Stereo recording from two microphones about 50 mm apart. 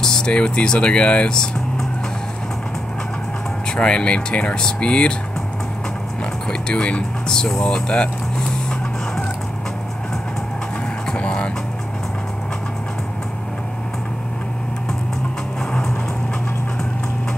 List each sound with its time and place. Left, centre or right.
0.0 s speech: centre
3.7 s speech: centre
6.7 s speech: left
7.2 s speech: centre
11.1 s vehicle: left